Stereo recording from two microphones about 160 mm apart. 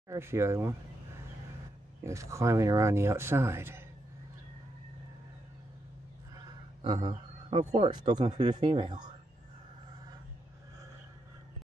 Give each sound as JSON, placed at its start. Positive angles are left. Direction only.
{"t": 0.1, "sound": "speech", "side_deg": -15}
{"t": 2.0, "sound": "speech", "side_deg": -20}
{"t": 6.8, "sound": "speech", "side_deg": -30}